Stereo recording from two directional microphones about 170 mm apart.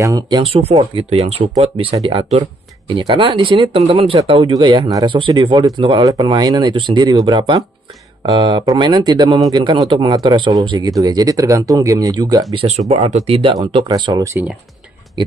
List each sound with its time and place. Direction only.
0.0 s speech: 25° right (ahead or behind)
12.6 s speech: 40° right (ahead or behind)